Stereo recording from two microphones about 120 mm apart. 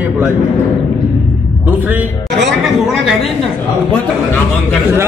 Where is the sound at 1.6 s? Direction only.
15° right (ahead or behind).